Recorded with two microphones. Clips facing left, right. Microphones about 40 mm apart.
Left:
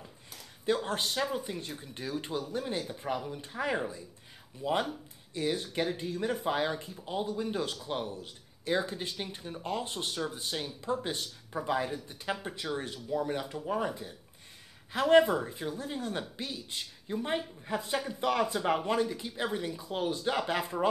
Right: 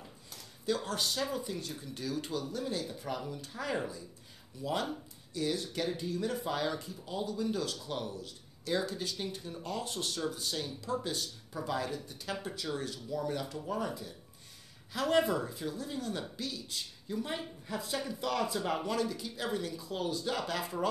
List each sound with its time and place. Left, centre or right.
0.7 s speech: left